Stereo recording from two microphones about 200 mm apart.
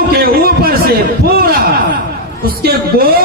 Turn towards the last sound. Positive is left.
turn(degrees=-50)  # may be behind; listen again after turning